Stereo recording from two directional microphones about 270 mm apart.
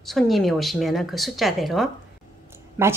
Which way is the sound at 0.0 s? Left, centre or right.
Centre.